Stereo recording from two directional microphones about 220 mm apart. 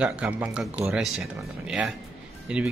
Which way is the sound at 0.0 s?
5° right (ahead or behind).